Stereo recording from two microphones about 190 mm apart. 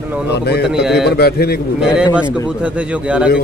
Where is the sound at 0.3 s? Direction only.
60° left (ahead or behind).